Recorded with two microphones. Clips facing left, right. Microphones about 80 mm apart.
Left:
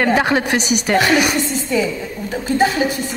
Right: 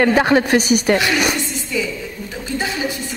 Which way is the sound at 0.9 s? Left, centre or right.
Left.